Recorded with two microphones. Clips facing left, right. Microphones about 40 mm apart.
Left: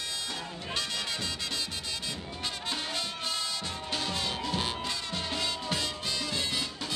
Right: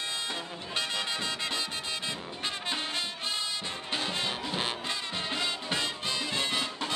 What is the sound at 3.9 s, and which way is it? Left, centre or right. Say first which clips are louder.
Music: right 1 dB; right.